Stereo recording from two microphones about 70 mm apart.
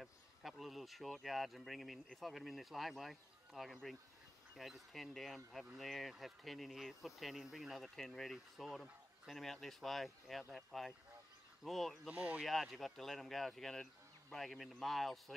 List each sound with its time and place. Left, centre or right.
0.0 s speech: centre
12.1 s speech: right
12.4 s speech: centre